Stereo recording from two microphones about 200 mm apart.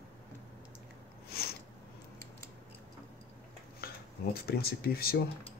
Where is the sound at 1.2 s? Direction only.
50° left (ahead or behind).